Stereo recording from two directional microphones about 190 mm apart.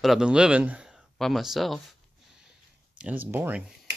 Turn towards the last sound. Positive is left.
turn(degrees=-10)  # may be behind; listen again after turning